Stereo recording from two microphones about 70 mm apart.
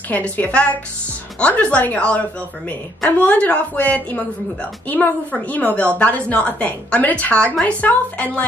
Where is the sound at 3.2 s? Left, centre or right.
Left.